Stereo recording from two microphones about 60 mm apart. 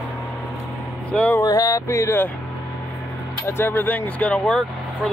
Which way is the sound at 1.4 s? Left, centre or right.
Left.